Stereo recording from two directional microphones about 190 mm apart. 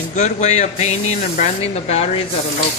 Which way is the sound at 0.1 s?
40° left (ahead or behind).